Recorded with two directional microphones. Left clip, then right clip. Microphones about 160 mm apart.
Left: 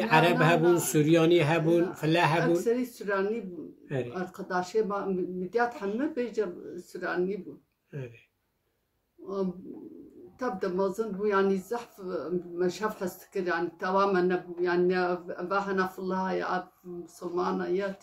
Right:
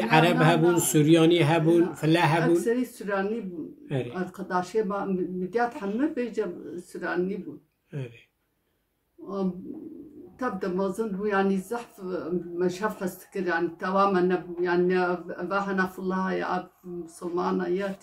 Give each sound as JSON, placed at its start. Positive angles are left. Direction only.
{"t": 0.0, "sound": "a man's voice", "side_deg": 0}
{"t": 2.4, "sound": "speech", "side_deg": 20}
{"t": 3.8, "sound": "speech", "side_deg": 0}
{"t": 4.1, "sound": "speech", "side_deg": 20}
{"t": 7.9, "sound": "a man's voice", "side_deg": 0}
{"t": 10.4, "sound": "speech", "side_deg": 20}